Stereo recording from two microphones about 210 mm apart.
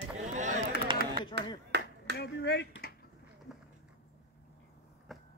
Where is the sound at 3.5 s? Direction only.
Centre (ahead or behind).